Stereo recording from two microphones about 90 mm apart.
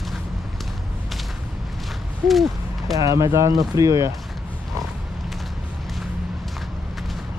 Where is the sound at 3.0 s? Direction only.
40° right (ahead or behind).